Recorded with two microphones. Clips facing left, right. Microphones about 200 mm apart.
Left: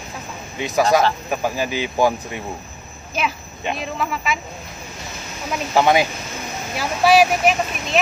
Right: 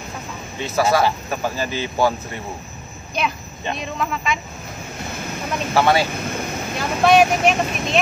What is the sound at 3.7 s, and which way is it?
Speech, 5° left (ahead or behind).